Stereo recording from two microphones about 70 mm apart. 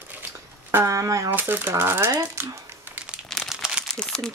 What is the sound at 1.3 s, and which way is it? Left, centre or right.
Speech, right.